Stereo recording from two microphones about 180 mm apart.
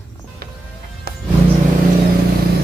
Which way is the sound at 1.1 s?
60° right (ahead or behind).